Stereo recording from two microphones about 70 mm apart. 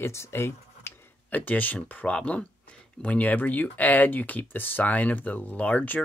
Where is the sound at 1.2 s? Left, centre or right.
Left.